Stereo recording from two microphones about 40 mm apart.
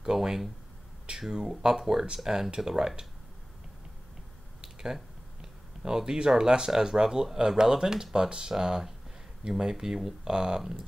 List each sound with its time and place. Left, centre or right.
0.0 s speech: centre
4.6 s speech: centre